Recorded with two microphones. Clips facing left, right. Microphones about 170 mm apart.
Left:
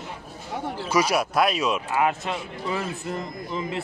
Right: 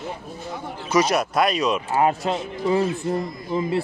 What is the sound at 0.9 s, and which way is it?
Speech, 5° left (ahead or behind).